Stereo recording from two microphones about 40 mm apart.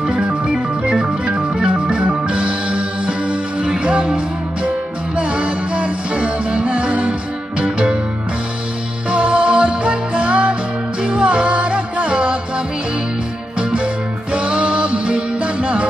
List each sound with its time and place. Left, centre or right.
0.0 s organ: right
3.6 s music: centre
9.1 s music: right
13.6 s music: right